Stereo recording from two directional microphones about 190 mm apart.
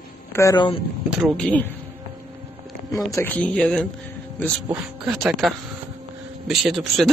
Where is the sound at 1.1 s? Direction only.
Centre (ahead or behind).